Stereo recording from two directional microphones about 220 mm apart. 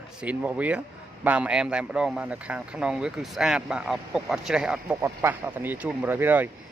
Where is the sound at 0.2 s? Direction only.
5° right (ahead or behind).